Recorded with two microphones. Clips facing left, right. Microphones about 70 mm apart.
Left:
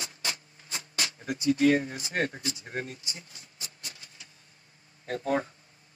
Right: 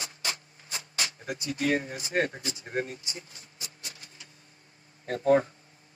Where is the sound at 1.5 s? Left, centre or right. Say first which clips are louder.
Left 4 dB; right.